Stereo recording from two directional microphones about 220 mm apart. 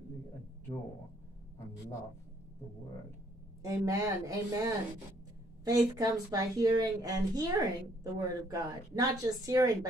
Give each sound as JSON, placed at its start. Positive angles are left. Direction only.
{"t": 3.6, "sound": "a woman's voice", "side_deg": -15}